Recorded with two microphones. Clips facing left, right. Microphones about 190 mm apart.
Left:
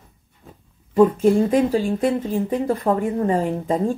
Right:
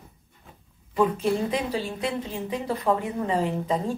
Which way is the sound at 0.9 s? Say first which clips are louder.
Left 8 dB; 45° left (ahead or behind).